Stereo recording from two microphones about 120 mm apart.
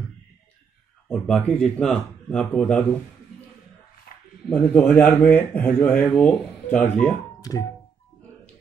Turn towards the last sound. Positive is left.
turn(degrees=30)  # may be behind; listen again after turning